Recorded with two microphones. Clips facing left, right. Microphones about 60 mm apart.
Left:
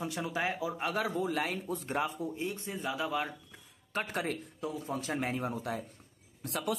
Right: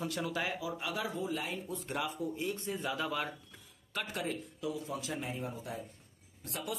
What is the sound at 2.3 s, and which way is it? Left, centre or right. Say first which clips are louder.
Speech: even; left.